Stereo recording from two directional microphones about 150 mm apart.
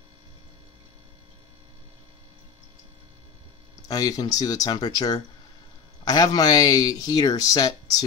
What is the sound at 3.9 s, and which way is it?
Speech, 25° left (ahead or behind).